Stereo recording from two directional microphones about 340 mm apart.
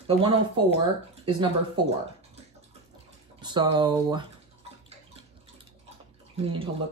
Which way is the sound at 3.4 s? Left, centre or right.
Centre.